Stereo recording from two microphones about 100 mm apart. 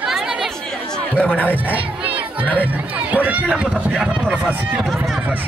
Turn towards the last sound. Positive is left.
turn(degrees=-10)  # may be behind; listen again after turning